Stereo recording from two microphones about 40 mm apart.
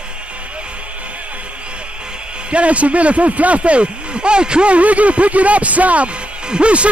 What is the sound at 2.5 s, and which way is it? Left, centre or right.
Speech, right.